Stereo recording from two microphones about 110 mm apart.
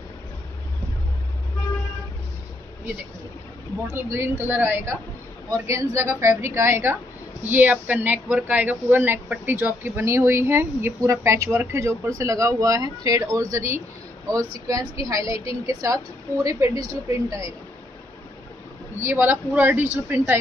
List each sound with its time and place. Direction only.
3.9 s speech: 20° right (ahead or behind)
19.0 s speech: 20° right (ahead or behind)